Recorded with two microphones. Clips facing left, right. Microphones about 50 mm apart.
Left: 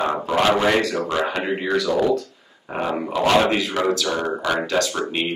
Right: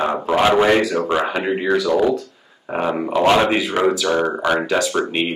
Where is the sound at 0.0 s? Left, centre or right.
Centre.